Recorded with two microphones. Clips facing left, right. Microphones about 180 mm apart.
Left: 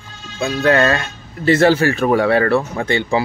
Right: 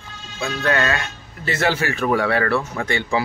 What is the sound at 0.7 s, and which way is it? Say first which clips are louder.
Speech: left 6 dB; 35° left (ahead or behind).